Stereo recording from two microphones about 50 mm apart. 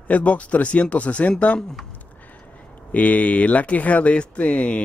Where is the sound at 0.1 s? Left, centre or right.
Left.